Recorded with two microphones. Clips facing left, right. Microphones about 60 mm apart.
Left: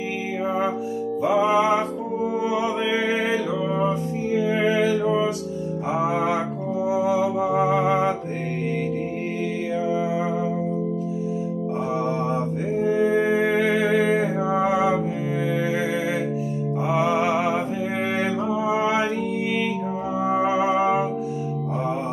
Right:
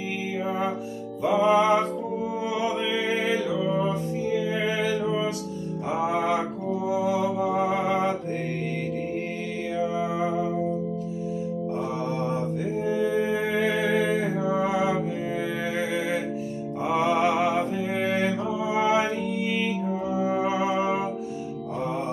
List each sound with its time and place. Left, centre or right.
0.5 s music: centre
2.4 s mantra: left
4.3 s music: left
5.9 s music: centre
6.9 s mantra: centre
7.4 s music: centre
9.8 s music: centre
12.8 s music: left
14.4 s music: centre
15.4 s music: centre
16.8 s music: centre
17.6 s music: left
20.2 s music: left